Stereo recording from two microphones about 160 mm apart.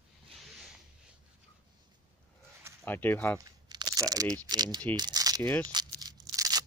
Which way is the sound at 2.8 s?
10° left (ahead or behind).